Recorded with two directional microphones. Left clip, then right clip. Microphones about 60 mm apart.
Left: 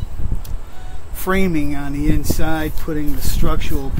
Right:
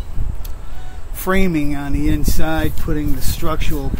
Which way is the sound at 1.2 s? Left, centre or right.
Right.